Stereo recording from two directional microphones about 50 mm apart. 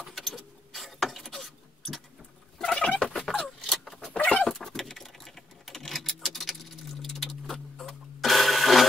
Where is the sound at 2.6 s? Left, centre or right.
Left.